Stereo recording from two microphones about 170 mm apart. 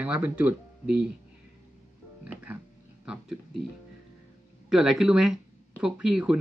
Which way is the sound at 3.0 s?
5° right (ahead or behind).